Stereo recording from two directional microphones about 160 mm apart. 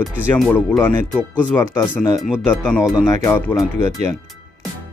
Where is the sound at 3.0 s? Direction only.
20° left (ahead or behind).